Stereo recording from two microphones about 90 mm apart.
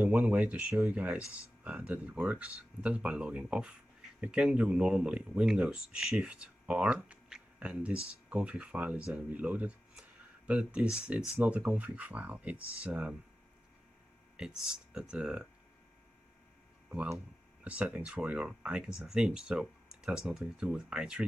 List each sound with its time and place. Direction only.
0.0 s speech: 15° right (ahead or behind)
14.3 s speech: 10° right (ahead or behind)
17.6 s speech: 15° right (ahead or behind)